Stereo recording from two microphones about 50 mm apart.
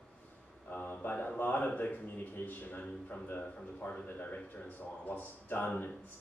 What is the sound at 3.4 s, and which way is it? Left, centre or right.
Speech, left.